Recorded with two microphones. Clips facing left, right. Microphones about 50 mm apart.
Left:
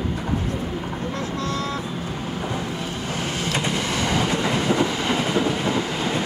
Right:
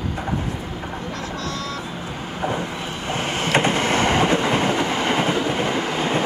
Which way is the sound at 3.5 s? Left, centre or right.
Right.